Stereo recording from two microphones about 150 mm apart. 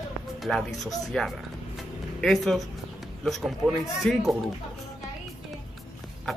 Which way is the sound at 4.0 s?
Centre (ahead or behind).